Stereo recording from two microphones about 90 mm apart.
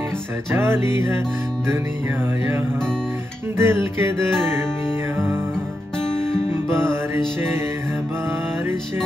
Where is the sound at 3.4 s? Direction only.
30° right (ahead or behind).